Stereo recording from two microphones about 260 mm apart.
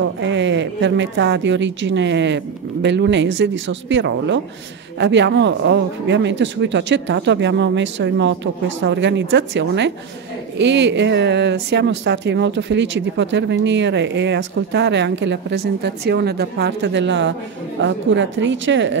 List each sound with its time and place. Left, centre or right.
0.0 s speech: right